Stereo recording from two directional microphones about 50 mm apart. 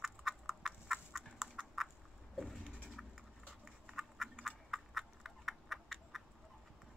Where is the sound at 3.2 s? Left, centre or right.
Centre.